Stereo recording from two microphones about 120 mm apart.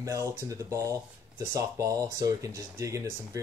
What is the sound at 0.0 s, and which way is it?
Speech, 25° right (ahead or behind).